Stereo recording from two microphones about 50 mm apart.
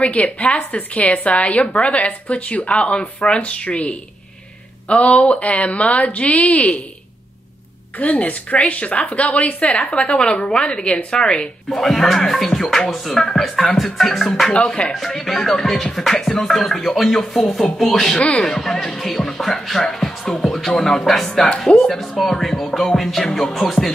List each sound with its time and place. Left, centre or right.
0.0 s a woman's voice: left
8.0 s a woman's voice: left
11.7 s speech: centre
12.9 s music: centre
13.2 s speech: centre
13.8 s music: centre
14.6 s speech: centre
15.0 s music: centre
18.4 s speech: centre
21.5 s a woman's voice: centre
21.7 s music: centre